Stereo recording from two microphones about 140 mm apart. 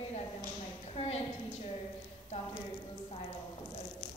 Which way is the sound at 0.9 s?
50° left (ahead or behind).